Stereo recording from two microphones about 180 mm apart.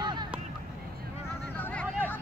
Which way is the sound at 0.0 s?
25° right (ahead or behind).